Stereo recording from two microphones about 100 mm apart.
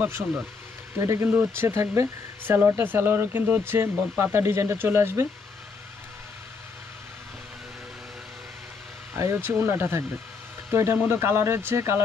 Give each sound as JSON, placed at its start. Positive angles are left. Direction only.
{"t": 0.9, "sound": "speech", "side_deg": -30}
{"t": 9.1, "sound": "speech", "side_deg": -25}